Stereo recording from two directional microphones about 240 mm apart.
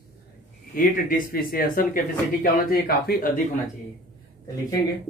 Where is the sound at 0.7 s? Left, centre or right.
Left.